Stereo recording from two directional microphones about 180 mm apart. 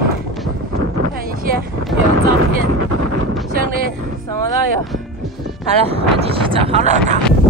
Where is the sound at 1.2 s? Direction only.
55° right (ahead or behind).